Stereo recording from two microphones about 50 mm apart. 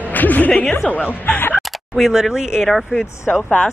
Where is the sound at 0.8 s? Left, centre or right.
Left.